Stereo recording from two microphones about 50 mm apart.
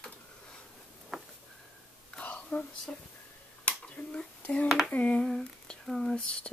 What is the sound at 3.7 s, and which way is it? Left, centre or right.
Finger snapping, left.